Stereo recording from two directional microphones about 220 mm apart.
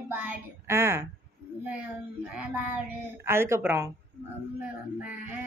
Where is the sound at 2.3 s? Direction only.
5° right (ahead or behind).